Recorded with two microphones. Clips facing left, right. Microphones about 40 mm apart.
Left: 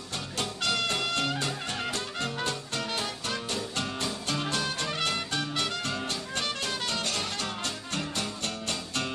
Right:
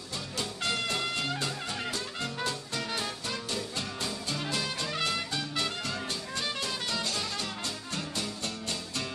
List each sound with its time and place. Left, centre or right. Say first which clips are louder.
0.4 s music: left 3 dB; left
4.8 s music: left 1 dB; left
5.3 s music: left 2 dB; left